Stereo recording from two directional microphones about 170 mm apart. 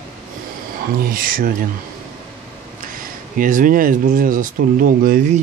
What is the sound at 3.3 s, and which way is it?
Speech, 55° right (ahead or behind).